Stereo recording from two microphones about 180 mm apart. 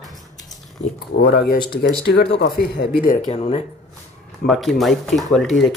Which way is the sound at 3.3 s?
35° left (ahead or behind).